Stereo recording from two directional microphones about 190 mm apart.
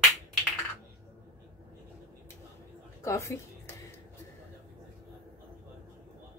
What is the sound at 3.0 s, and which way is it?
Speech, 15° left (ahead or behind).